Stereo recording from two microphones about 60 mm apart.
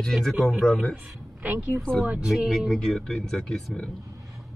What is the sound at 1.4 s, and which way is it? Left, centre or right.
Speech, right.